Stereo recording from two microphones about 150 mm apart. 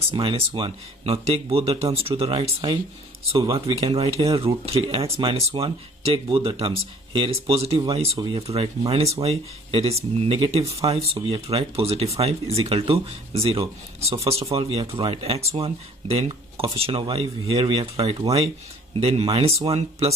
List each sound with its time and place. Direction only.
0.1 s speech: 30° right (ahead or behind)